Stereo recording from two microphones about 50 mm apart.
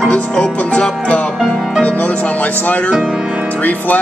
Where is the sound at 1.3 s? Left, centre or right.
Centre.